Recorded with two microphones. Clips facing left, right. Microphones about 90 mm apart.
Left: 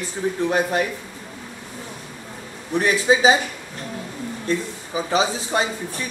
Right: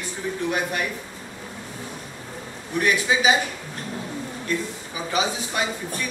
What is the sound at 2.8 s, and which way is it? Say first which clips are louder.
Speech: left 4 dB; 30° left (ahead or behind).